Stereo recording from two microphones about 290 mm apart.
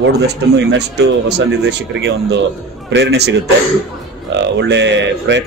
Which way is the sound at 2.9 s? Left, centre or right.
Right.